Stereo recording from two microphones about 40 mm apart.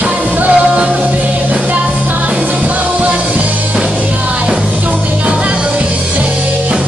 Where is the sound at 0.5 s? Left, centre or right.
Right.